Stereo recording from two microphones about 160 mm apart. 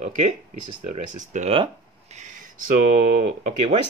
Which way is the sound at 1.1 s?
50° right (ahead or behind).